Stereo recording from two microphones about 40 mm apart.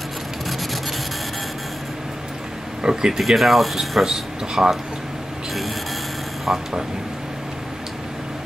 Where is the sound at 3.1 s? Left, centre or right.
Centre.